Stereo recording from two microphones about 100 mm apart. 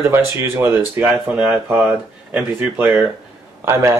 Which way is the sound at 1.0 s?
10° right (ahead or behind).